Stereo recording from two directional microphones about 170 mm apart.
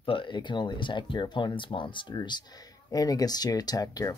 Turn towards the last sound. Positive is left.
turn(degrees=20)  # may be behind; listen again after turning